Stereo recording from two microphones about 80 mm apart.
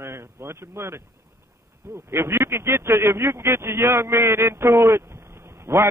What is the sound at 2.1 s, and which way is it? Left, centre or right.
Speech, right.